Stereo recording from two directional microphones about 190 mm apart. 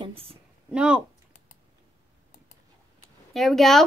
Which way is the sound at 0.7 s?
5° right (ahead or behind).